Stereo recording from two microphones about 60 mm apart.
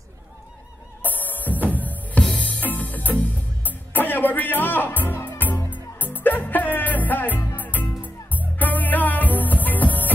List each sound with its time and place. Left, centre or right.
1.0 s music: left